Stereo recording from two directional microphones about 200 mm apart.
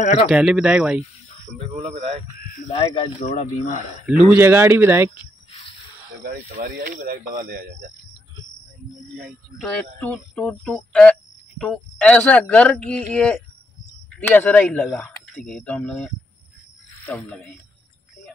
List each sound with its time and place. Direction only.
0.0 s speech: 35° left (ahead or behind)
0.3 s speech: 5° right (ahead or behind)
1.8 s a man's voice: 30° right (ahead or behind)
2.7 s speech: 35° left (ahead or behind)
4.3 s speech: 10° right (ahead or behind)
6.2 s speech: 50° right (ahead or behind)
9.2 s speech: 5° left (ahead or behind)